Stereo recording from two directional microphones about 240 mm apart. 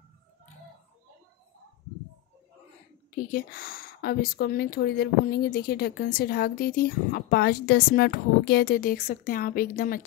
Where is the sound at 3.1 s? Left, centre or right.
Left.